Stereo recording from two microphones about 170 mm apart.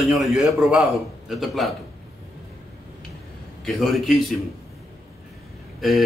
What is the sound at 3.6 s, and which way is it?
Speech, centre (ahead or behind).